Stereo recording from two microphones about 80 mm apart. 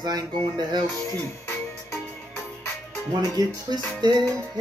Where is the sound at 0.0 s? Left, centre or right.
Right.